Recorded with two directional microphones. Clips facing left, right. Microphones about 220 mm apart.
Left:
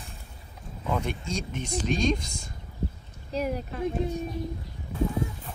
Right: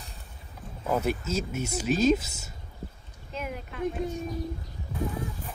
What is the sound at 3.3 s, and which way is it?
Speech, 35° left (ahead or behind).